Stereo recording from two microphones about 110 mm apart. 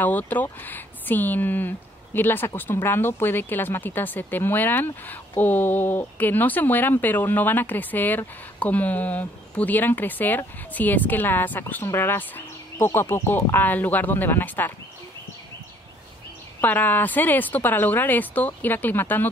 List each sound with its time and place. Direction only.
0.0 s speech: 15° left (ahead or behind)
16.6 s speech: 15° left (ahead or behind)